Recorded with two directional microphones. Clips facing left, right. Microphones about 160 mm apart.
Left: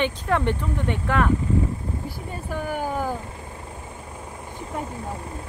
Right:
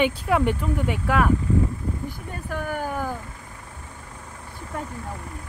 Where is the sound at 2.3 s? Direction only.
10° left (ahead or behind).